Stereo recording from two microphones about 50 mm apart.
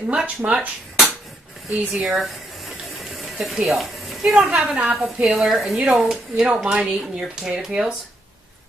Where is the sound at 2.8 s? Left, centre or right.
Centre.